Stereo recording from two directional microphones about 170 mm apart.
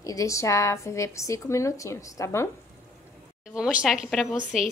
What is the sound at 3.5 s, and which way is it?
Speech, 5° right (ahead or behind).